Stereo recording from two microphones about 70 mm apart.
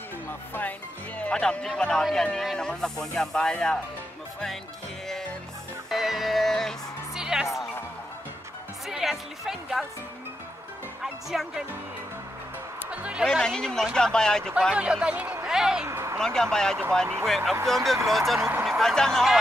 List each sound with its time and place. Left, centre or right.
0.6 s speech: left
5.9 s music: centre
7.2 s music: centre
8.8 s speech: centre
11.0 s speech: centre
12.9 s speech: centre
13.2 s speech: centre
14.7 s speech: centre
15.4 s a sound: centre
15.9 s a sound: right
16.2 s speech: centre